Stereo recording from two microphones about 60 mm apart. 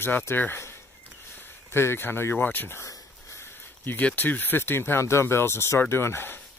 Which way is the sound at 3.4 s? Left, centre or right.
Left.